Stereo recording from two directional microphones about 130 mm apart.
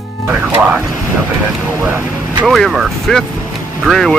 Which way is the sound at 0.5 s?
15° right (ahead or behind).